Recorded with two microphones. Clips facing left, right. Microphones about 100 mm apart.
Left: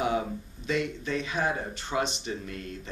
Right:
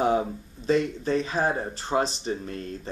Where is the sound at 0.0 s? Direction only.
35° right (ahead or behind).